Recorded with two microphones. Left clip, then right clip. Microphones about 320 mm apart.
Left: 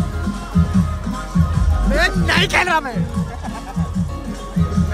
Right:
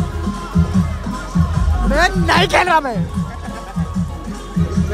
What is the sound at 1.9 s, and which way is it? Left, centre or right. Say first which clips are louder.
Speech: right 3 dB; centre.